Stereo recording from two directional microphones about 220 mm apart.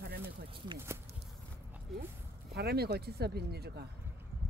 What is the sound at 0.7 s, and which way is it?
Speech, 10° right (ahead or behind).